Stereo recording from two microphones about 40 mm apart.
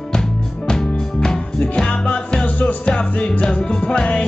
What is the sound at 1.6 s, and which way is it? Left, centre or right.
Music, left.